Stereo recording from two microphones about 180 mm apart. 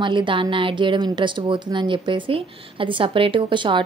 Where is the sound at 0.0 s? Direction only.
25° right (ahead or behind).